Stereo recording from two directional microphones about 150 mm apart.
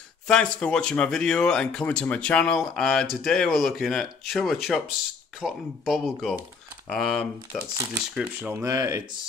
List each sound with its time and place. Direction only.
0.3 s speech: 5° left (ahead or behind)
7.7 s speech: 25° right (ahead or behind)
8.1 s speech: 10° right (ahead or behind)